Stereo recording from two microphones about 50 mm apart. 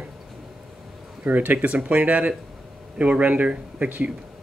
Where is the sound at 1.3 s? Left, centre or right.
Right.